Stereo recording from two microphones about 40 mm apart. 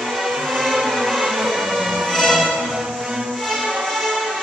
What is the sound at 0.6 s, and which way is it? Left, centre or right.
Music, centre.